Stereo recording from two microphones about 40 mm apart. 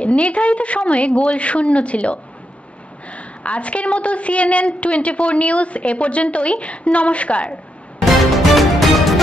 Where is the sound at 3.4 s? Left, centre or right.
Left.